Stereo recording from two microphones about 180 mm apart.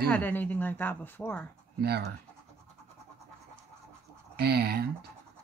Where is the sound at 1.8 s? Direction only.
60° right (ahead or behind).